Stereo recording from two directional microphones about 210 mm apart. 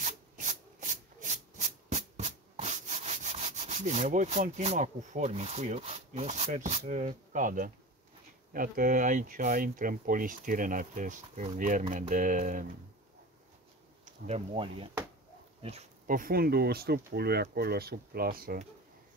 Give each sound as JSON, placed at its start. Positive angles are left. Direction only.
{"t": 0.0, "sound": "rub", "side_deg": -40}
{"t": 6.8, "sound": "speech", "side_deg": -35}
{"t": 14.0, "sound": "speech", "side_deg": -30}